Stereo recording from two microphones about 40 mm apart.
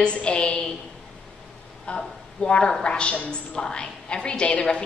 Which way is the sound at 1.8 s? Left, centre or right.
Left.